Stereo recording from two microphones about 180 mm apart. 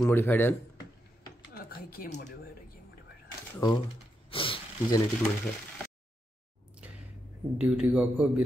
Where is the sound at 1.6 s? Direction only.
55° left (ahead or behind).